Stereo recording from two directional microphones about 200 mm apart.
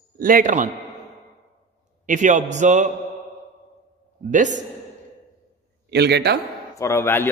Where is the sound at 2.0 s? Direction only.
40° right (ahead or behind).